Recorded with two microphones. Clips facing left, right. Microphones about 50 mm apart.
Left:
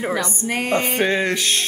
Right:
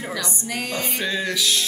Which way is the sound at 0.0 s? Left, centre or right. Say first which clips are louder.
Left 6 dB; left.